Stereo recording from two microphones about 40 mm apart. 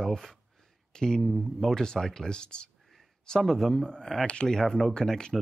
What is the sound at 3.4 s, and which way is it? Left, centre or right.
Speech, centre.